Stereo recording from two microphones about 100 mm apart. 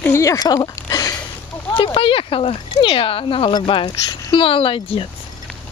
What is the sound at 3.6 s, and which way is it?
Speech, 55° left (ahead or behind).